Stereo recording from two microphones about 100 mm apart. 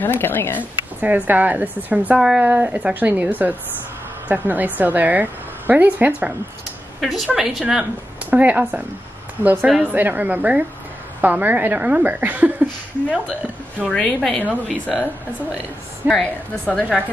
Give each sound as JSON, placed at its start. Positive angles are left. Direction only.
{"t": 0.0, "sound": "speech", "side_deg": 20}
{"t": 1.0, "sound": "a woman's voice", "side_deg": -15}
{"t": 2.1, "sound": "a woman's voice", "side_deg": -5}
{"t": 7.0, "sound": "a woman's voice", "side_deg": 0}
{"t": 8.3, "sound": "a woman's voice", "side_deg": -15}
{"t": 13.8, "sound": "a woman's voice", "side_deg": 5}
{"t": 14.7, "sound": "a woman's voice", "side_deg": -10}
{"t": 16.1, "sound": "a woman's voice", "side_deg": 5}